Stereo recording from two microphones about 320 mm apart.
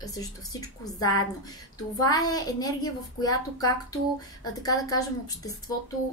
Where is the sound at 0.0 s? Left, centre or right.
Centre.